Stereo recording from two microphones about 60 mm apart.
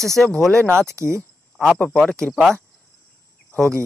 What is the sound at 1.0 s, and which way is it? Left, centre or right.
Speech, right.